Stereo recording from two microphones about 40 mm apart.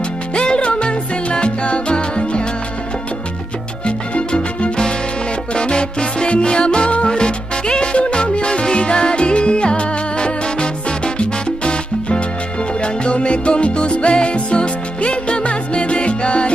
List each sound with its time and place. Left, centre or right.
0.3 s music: left
3.8 s salsa music: left
5.5 s music: left